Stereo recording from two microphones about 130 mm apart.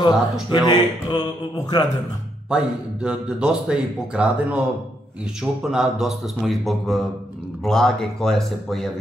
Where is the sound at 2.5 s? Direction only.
10° right (ahead or behind).